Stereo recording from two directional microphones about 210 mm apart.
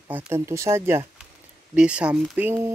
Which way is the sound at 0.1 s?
10° right (ahead or behind).